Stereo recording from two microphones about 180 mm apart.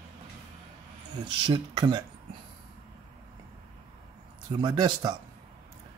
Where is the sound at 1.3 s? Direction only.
30° right (ahead or behind).